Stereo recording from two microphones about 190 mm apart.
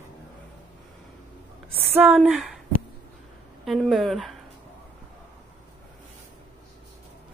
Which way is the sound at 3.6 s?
Centre (ahead or behind).